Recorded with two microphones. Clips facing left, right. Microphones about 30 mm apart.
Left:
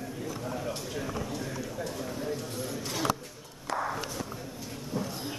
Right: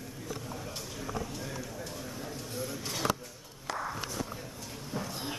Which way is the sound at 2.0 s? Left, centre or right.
Centre.